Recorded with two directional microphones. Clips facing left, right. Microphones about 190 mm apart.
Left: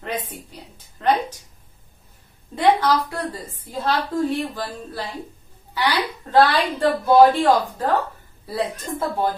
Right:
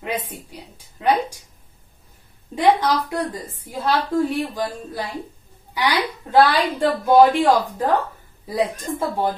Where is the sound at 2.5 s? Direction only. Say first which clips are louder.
Even; 20° right (ahead or behind).